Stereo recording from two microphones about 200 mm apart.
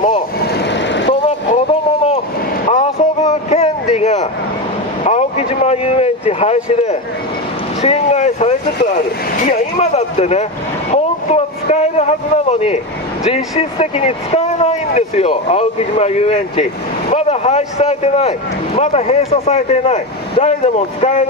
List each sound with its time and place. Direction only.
0.4 s vehicle: 55° left (ahead or behind)
1.5 s a sound: 30° left (ahead or behind)
2.7 s vehicle: 35° left (ahead or behind)
5.0 s a sound: 30° left (ahead or behind)
7.8 s vehicle: 35° left (ahead or behind)
9.4 s speech: 35° left (ahead or behind)
10.9 s vehicle: 35° left (ahead or behind)
12.4 s speech: 30° left (ahead or behind)